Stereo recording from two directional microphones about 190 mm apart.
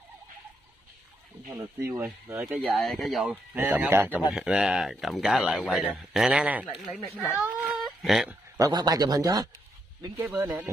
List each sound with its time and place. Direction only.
1.5 s speech: 10° right (ahead or behind)
7.1 s speech: 5° left (ahead or behind)
7.8 s a sound: centre (ahead or behind)
8.5 s speech: 20° right (ahead or behind)